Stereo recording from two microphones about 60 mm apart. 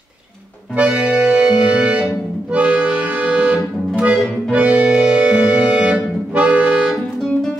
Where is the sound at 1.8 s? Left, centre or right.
Right.